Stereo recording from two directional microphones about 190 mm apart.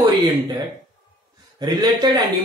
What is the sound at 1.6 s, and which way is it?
Speech, 20° right (ahead or behind).